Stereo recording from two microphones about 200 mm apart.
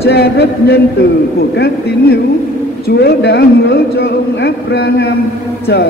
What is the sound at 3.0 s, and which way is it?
A man's voice, 55° left (ahead or behind).